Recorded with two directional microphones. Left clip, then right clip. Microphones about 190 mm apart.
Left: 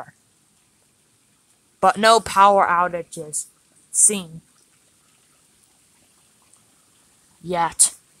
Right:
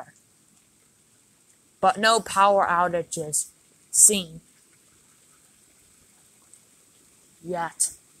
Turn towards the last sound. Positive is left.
turn(degrees=20)  # may be behind; listen again after turning